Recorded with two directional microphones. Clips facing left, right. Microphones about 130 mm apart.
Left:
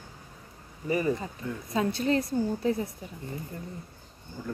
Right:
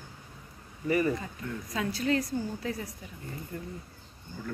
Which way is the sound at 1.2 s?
25° left (ahead or behind).